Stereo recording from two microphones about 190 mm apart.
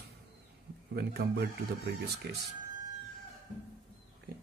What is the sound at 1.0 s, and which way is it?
Speech, 55° right (ahead or behind).